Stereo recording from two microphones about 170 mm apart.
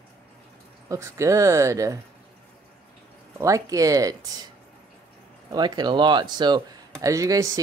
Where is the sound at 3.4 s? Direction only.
20° right (ahead or behind).